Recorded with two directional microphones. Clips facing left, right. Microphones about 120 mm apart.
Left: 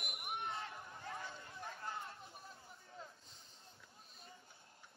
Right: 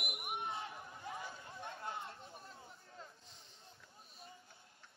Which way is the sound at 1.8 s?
25° right (ahead or behind).